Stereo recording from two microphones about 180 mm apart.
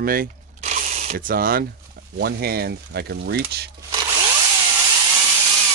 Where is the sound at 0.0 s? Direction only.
55° right (ahead or behind).